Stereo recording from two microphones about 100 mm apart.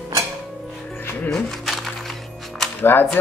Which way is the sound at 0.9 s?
15° left (ahead or behind).